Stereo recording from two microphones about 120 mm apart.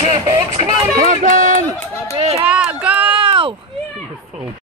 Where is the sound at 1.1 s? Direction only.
90° right.